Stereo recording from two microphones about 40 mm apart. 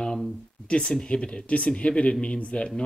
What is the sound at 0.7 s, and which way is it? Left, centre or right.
Speech, left.